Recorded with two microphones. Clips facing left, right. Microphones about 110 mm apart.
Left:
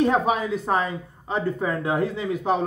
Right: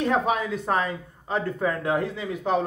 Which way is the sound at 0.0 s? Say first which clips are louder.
Left 3 dB; 10° left (ahead or behind).